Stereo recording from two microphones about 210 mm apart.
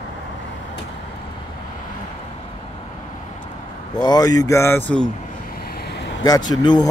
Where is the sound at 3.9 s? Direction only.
20° left (ahead or behind).